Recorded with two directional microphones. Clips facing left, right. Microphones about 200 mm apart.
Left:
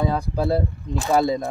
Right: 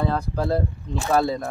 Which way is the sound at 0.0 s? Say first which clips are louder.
Left 2 dB; 10° left (ahead or behind).